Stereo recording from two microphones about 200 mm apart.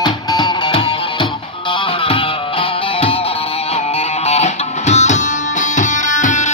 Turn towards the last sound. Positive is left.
turn(degrees=40)  # may be behind; listen again after turning